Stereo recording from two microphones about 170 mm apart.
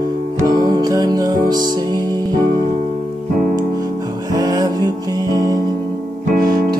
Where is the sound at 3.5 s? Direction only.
20° right (ahead or behind).